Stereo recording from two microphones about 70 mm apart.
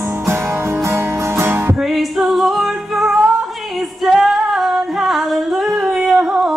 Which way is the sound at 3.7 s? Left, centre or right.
Centre.